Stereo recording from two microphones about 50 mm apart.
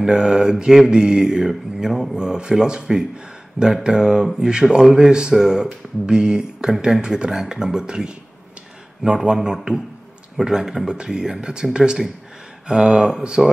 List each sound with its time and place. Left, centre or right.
0.0 s speech: centre